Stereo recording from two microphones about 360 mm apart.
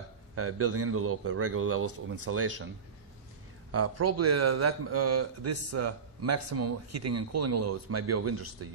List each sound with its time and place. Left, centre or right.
0.4 s a man's voice: right
3.7 s speech: right